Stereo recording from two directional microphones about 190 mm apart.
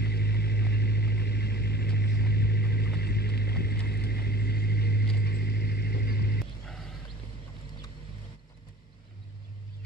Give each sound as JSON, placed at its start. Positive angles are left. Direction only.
{"t": 0.0, "sound": "vehicle", "side_deg": 60}